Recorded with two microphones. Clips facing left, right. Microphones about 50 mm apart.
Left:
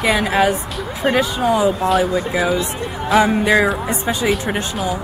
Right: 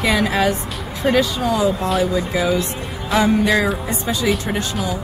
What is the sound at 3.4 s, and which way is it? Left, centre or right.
Speech, centre.